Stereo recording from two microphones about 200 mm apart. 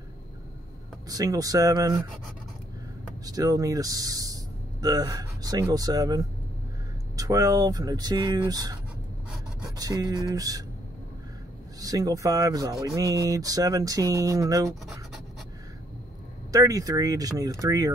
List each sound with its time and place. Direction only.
1.0 s speech: 20° right (ahead or behind)
3.3 s speech: 20° right (ahead or behind)
9.8 s speech: 20° right (ahead or behind)
11.8 s speech: 20° right (ahead or behind)
16.5 s speech: 15° right (ahead or behind)